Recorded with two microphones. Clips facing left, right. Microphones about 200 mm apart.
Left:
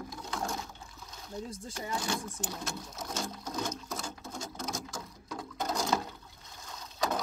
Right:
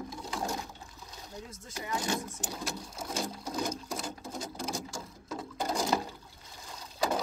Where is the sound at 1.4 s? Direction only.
35° left (ahead or behind).